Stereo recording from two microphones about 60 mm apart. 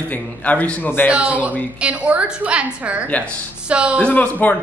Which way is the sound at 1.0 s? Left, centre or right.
Right.